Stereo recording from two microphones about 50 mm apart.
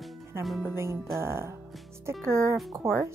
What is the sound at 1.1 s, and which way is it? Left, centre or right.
A woman's voice, right.